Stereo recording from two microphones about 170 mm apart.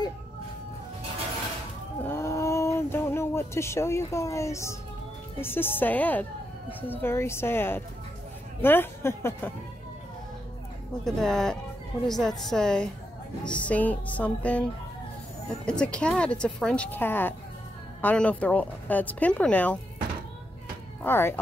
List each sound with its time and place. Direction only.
2.0 s a sound: 15° left (ahead or behind)
5.4 s a woman's voice: 10° left (ahead or behind)
11.1 s a woman's voice: 5° left (ahead or behind)
21.0 s speech: 15° left (ahead or behind)